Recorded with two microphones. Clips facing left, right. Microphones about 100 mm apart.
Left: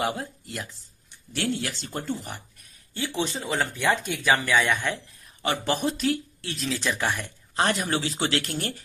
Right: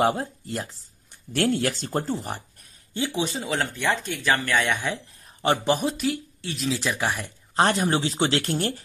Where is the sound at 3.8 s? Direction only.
10° left (ahead or behind).